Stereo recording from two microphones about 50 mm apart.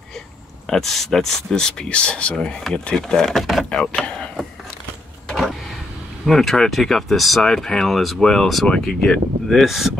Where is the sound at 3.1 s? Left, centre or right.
Centre.